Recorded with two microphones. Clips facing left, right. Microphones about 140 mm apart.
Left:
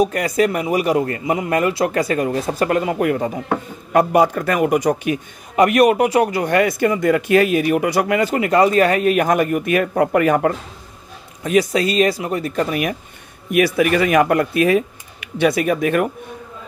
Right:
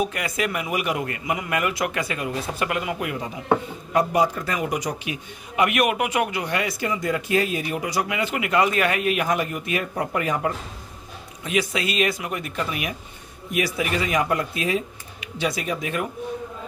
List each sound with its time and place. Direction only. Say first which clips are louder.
0.0 s a man's voice: left 9 dB; 40° left (ahead or behind); by 10.5 s 60° left (ahead or behind)
11.4 s a man's voice: left 8 dB; 40° left (ahead or behind)
13.5 s speech: left 9 dB; 60° left (ahead or behind)